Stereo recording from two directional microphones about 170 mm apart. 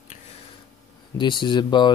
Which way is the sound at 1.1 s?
30° left (ahead or behind).